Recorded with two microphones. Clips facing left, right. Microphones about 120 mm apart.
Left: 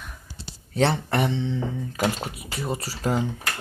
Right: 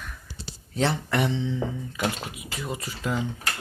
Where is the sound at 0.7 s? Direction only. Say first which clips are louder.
Left 3 dB; 60° left (ahead or behind).